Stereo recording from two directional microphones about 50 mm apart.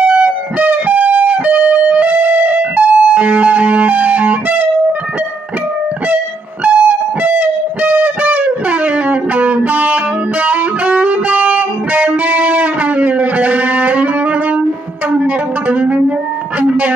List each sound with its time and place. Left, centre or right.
0.0 s guitar: right
6.6 s music: right